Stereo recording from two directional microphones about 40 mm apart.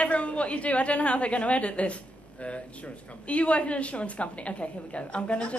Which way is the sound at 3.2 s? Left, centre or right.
Left.